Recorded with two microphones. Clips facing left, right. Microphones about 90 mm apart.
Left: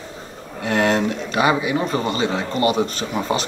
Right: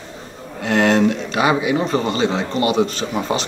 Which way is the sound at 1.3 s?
20° right (ahead or behind).